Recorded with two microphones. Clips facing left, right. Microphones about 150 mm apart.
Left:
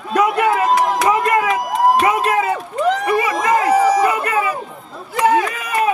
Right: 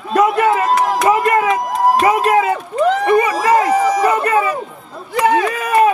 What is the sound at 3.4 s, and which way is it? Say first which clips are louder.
Speech: right 1 dB; 35° right (ahead or behind).